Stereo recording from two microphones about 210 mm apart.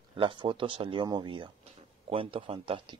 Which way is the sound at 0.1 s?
25° right (ahead or behind).